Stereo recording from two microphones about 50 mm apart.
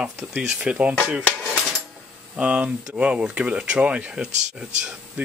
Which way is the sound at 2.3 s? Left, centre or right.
Right.